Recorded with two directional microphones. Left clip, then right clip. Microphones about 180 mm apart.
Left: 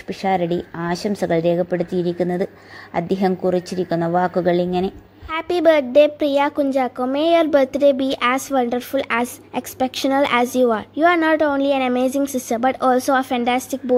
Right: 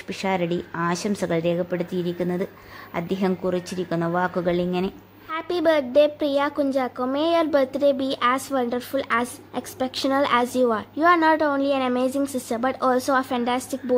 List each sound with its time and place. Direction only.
0.1 s a woman's voice: 5° left (ahead or behind)
5.3 s a woman's voice: 25° left (ahead or behind)